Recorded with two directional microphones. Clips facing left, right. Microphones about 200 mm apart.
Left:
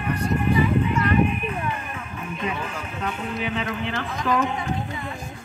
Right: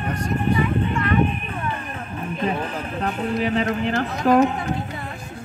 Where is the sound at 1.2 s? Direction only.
35° right (ahead or behind).